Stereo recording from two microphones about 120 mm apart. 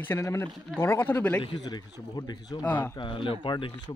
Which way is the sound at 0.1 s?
20° left (ahead or behind).